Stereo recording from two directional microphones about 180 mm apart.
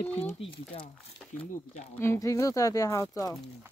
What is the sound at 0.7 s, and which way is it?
Speech, 30° left (ahead or behind).